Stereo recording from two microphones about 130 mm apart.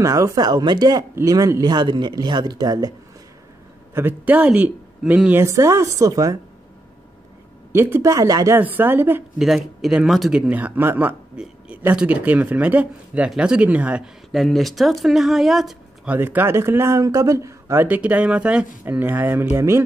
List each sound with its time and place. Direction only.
0.0 s speech: 25° right (ahead or behind)
3.9 s speech: 15° right (ahead or behind)
5.4 s speech: 20° right (ahead or behind)
7.7 s speech: 20° right (ahead or behind)
8.5 s speech: 15° right (ahead or behind)
9.4 s speech: centre (ahead or behind)
16.2 s speech: 15° right (ahead or behind)
17.8 s speech: 10° right (ahead or behind)